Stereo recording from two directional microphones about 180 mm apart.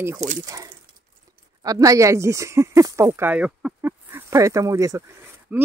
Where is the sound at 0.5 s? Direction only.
20° right (ahead or behind).